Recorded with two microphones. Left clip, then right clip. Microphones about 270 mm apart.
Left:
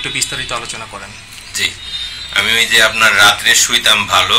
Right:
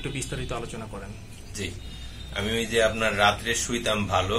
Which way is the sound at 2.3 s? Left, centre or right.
Centre.